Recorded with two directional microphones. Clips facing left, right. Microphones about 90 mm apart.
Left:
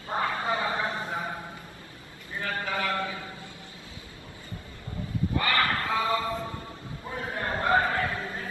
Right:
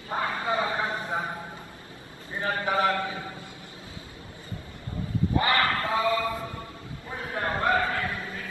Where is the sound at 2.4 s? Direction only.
25° right (ahead or behind).